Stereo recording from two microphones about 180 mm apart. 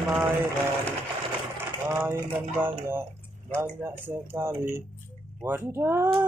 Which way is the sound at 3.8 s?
10° right (ahead or behind).